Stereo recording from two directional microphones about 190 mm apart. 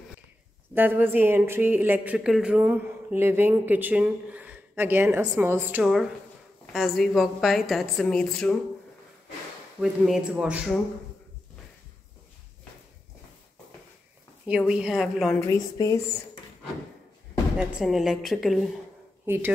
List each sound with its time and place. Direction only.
0.7 s a woman's voice: 10° right (ahead or behind)
9.8 s a woman's voice: centre (ahead or behind)
14.7 s a woman's voice: 5° right (ahead or behind)
15.4 s speech: 15° left (ahead or behind)
17.6 s a woman's voice: centre (ahead or behind)
19.2 s speech: 10° right (ahead or behind)